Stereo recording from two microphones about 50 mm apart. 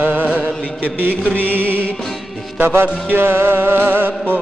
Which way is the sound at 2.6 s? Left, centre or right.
Right.